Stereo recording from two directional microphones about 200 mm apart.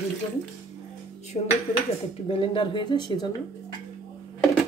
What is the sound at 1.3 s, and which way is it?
Dishes, 40° left (ahead or behind).